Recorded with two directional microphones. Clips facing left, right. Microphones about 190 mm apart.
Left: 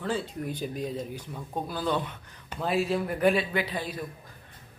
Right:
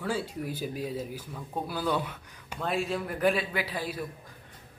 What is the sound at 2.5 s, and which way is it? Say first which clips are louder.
A man's voice: left 3 dB; centre (ahead or behind).